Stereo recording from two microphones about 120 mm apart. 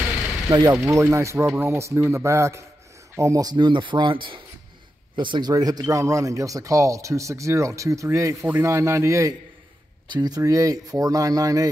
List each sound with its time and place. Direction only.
0.5 s speech: 30° right (ahead or behind)
10.0 s speech: 35° right (ahead or behind)